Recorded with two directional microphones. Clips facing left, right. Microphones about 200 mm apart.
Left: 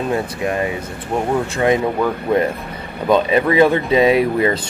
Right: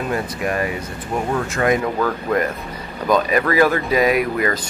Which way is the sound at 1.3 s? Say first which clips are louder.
Left 2 dB; 20° left (ahead or behind).